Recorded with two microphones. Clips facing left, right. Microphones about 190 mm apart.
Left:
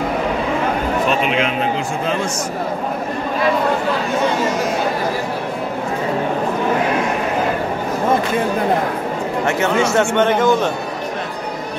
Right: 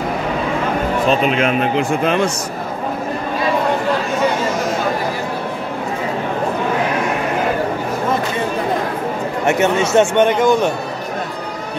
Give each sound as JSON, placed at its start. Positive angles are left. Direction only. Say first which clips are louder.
{"t": 1.0, "sound": "speech", "louder": "right 4 dB", "side_deg": -40}
{"t": 9.5, "sound": "speech", "louder": "right 3 dB", "side_deg": -20}